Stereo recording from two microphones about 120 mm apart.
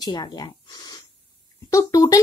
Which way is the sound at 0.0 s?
35° left (ahead or behind).